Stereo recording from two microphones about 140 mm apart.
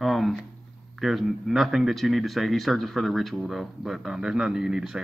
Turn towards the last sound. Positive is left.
turn(degrees=-5)  # may be behind; listen again after turning